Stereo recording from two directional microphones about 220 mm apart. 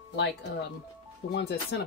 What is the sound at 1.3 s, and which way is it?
Speech, 50° left (ahead or behind).